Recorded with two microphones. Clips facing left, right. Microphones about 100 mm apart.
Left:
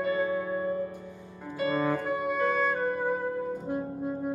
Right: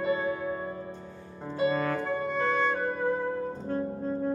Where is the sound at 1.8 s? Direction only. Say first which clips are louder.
Left 1 dB; 15° left (ahead or behind).